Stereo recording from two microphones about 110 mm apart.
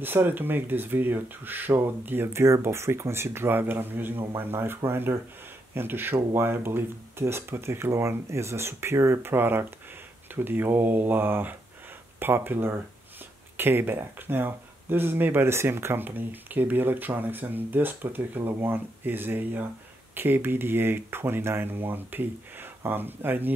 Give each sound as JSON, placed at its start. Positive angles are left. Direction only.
{"t": 0.0, "sound": "speech", "side_deg": -20}